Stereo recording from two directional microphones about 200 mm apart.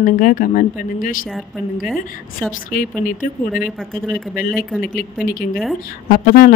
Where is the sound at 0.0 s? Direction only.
40° left (ahead or behind).